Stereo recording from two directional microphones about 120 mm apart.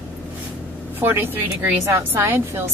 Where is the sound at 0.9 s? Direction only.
20° right (ahead or behind).